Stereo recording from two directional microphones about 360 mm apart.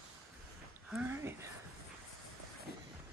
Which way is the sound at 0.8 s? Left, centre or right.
Centre.